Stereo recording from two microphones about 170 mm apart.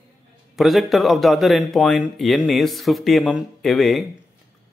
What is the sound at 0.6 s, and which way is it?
Speech, centre (ahead or behind).